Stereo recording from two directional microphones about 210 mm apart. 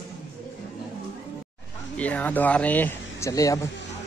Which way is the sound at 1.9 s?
5° left (ahead or behind).